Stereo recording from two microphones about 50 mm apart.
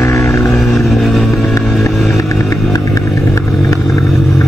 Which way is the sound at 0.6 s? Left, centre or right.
Centre.